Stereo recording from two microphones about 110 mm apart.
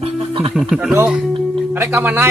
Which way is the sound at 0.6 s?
Centre (ahead or behind).